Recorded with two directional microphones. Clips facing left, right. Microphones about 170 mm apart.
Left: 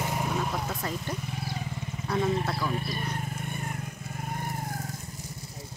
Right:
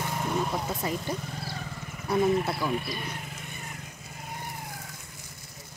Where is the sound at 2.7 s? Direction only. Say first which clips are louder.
Even; 40° left (ahead or behind).